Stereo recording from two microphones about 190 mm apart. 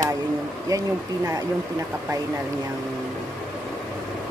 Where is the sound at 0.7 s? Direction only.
15° right (ahead or behind).